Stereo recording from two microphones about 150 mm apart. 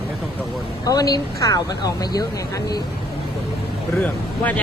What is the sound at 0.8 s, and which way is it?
Speech, 25° left (ahead or behind).